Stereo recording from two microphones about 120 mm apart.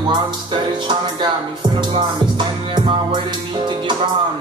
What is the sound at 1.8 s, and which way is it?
Music, 40° right (ahead or behind).